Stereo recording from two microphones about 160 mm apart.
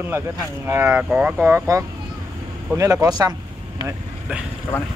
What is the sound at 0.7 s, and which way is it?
Speech, 15° right (ahead or behind).